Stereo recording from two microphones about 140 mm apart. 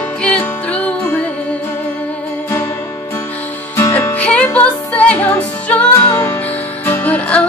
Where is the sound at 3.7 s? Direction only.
20° left (ahead or behind).